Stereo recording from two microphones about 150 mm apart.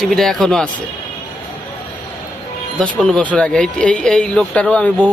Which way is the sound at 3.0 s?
5° left (ahead or behind).